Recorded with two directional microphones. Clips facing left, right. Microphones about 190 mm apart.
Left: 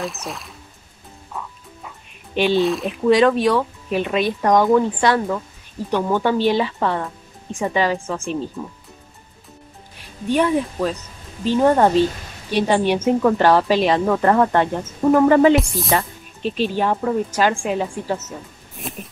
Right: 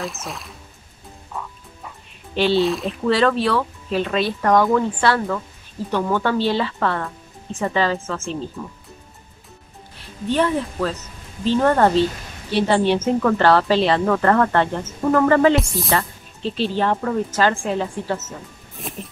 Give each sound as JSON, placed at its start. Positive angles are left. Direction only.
{"t": 0.0, "sound": "speech", "side_deg": 0}
{"t": 2.3, "sound": "speech", "side_deg": 15}
{"t": 2.6, "sound": "speech", "side_deg": 0}
{"t": 3.1, "sound": "a woman's voice", "side_deg": 15}
{"t": 9.9, "sound": "a woman's voice", "side_deg": 15}
{"t": 15.5, "sound": "speech", "side_deg": 0}
{"t": 15.9, "sound": "a woman's voice", "side_deg": 15}